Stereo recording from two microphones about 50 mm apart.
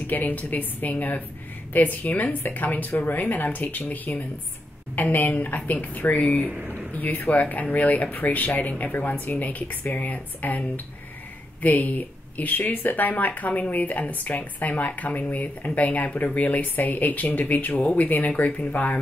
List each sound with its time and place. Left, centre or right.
0.0 s speech: left
11.6 s speech: left